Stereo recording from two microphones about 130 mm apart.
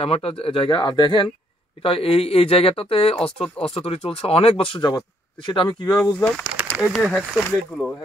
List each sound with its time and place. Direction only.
0.0 s speech: 45° left (ahead or behind); by 6.1 s 30° left (ahead or behind)
6.1 s speech: 10° left (ahead or behind)
6.5 s a sound: 10° right (ahead or behind)
6.9 s speech: centre (ahead or behind)